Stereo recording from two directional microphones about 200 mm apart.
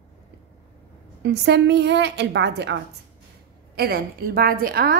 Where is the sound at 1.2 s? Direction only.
55° right (ahead or behind).